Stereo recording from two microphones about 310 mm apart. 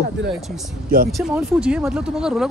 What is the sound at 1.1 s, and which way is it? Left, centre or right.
Speech, centre.